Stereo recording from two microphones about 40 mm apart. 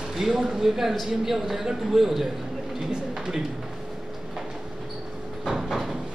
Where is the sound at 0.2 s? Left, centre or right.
Centre.